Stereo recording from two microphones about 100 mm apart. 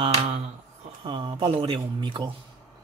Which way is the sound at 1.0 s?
55° right (ahead or behind).